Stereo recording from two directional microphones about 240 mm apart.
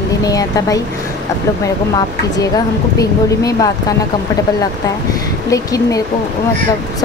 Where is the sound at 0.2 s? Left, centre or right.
Centre.